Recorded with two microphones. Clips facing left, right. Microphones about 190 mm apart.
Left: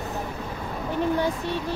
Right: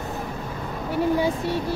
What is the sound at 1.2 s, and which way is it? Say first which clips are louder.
Speech: right 3 dB; 10° right (ahead or behind).